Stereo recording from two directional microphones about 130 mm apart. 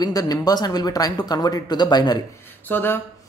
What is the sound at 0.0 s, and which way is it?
Speech, 30° left (ahead or behind).